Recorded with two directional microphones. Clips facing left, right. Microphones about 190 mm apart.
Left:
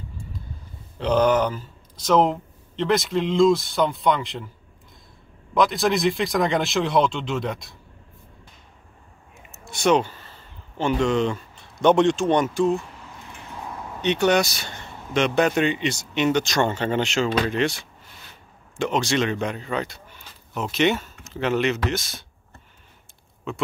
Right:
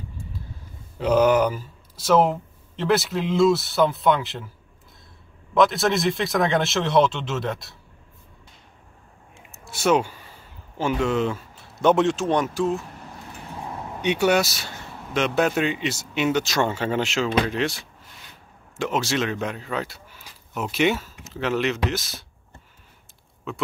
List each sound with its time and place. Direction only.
0.9 s speech: 5° right (ahead or behind)
5.5 s speech: centre (ahead or behind)
9.5 s speech: 5° right (ahead or behind)
14.0 s speech: 10° right (ahead or behind)
23.5 s speech: 5° right (ahead or behind)